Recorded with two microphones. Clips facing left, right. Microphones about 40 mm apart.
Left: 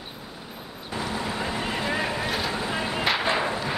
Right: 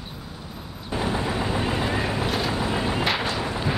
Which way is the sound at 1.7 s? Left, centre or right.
Centre.